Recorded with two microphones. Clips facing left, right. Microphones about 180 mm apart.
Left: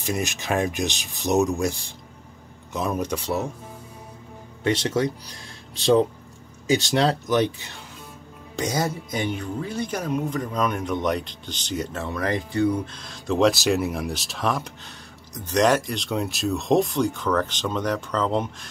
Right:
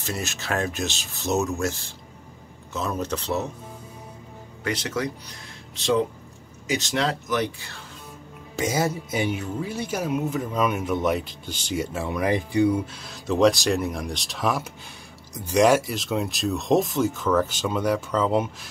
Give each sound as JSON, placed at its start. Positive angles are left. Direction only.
{"t": 0.0, "sound": "speech", "side_deg": 15}
{"t": 4.6, "sound": "speech", "side_deg": 25}
{"t": 8.5, "sound": "speech", "side_deg": -5}